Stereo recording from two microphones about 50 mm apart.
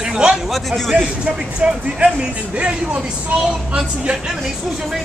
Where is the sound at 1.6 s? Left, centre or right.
Right.